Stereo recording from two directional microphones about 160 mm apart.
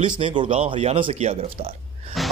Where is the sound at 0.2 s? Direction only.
30° right (ahead or behind).